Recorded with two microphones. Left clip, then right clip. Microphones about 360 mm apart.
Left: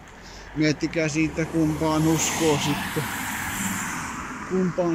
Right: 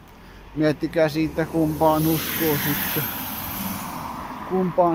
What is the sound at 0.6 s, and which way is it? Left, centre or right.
Speech, centre.